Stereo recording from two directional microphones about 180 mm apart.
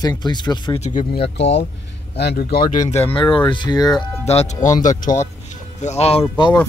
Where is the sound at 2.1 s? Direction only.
65° left (ahead or behind).